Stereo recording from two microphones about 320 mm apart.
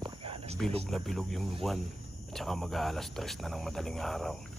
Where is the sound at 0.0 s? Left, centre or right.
Centre.